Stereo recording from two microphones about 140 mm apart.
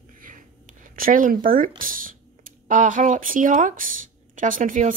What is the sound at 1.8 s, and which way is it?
Speech, 80° right.